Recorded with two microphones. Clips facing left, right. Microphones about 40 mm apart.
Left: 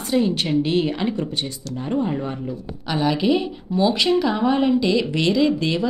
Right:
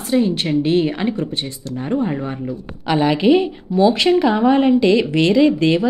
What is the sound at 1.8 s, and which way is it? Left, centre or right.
Speech, right.